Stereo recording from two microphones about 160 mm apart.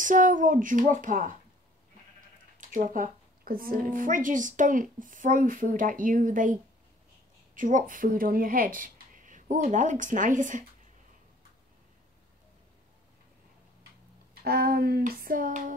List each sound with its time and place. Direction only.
0.0 s a woman's voice: 55° right (ahead or behind)
2.7 s a woman's voice: 55° right (ahead or behind)
14.4 s a sound: 75° right (ahead or behind); by 15.7 s 55° right (ahead or behind)